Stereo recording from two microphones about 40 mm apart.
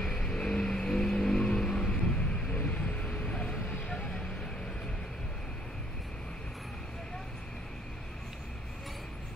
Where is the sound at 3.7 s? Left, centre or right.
Left.